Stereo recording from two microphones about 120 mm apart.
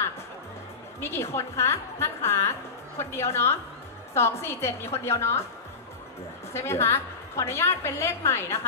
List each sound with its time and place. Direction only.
1.0 s a woman's voice: 20° left (ahead or behind)
6.5 s a woman's voice: 20° left (ahead or behind)